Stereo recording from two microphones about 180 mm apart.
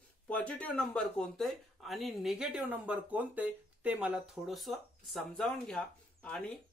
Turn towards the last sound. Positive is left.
turn(degrees=5)  # may be behind; listen again after turning